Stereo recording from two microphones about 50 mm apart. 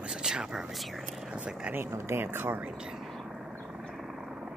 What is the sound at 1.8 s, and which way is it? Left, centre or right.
Speech, right.